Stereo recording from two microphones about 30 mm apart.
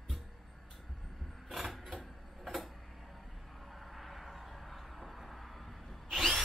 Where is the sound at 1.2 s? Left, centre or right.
Centre.